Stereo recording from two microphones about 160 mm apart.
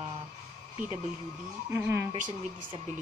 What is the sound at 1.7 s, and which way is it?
Speech, 15° right (ahead or behind).